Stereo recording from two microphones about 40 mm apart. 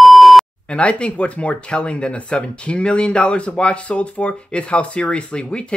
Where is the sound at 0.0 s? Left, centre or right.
Centre.